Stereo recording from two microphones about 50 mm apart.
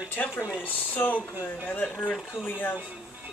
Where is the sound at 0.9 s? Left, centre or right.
Left.